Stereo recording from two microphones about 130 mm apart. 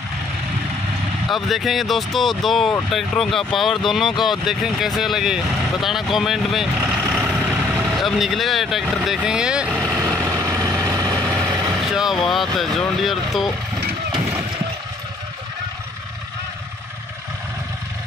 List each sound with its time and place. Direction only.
1.3 s speech: centre (ahead or behind)
6.8 s vehicle: 10° right (ahead or behind)
8.0 s speech: centre (ahead or behind)
10.2 s vehicle: 25° right (ahead or behind)
11.3 s vehicle: 5° right (ahead or behind)
11.7 s speech: 5° right (ahead or behind)